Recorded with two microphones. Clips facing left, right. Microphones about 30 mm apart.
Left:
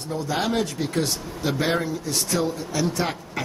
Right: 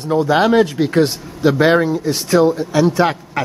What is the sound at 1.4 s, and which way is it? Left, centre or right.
Speech, right.